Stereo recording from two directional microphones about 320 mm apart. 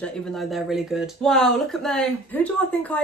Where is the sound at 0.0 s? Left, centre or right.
Centre.